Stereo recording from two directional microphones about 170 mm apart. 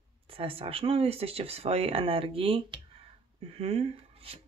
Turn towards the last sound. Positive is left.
turn(degrees=-35)  # may be behind; listen again after turning